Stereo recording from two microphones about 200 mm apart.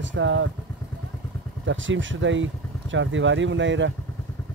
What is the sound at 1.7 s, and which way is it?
Speech, 70° right (ahead or behind).